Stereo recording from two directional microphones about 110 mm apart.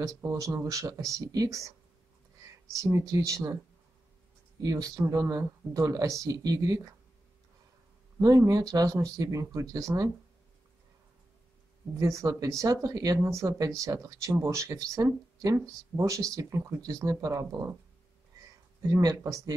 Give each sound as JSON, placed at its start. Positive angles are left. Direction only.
{"t": 0.0, "sound": "speech", "side_deg": -30}
{"t": 2.8, "sound": "speech", "side_deg": -30}
{"t": 4.6, "sound": "speech", "side_deg": -35}
{"t": 8.2, "sound": "speech", "side_deg": -30}
{"t": 12.0, "sound": "speech", "side_deg": -25}
{"t": 18.9, "sound": "speech", "side_deg": -30}